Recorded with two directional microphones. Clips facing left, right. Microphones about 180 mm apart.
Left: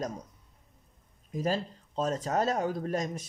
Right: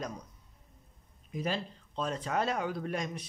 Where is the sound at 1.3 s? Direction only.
40° left (ahead or behind).